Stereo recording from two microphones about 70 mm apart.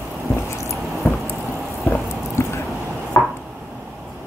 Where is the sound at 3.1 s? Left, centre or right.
Left.